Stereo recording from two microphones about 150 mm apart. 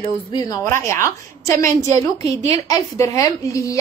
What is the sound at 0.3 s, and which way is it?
A woman's voice, 25° left (ahead or behind).